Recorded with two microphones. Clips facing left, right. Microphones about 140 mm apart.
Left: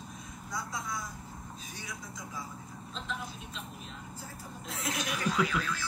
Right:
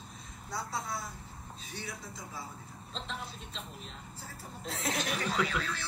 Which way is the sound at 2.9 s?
30° right (ahead or behind).